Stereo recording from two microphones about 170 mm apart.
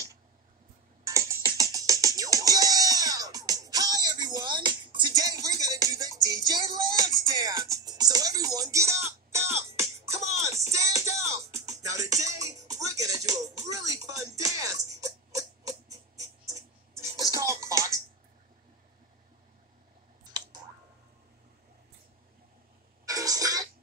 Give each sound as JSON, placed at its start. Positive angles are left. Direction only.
{"t": 1.0, "sound": "music", "side_deg": -20}
{"t": 16.9, "sound": "music", "side_deg": -20}
{"t": 23.0, "sound": "music", "side_deg": -20}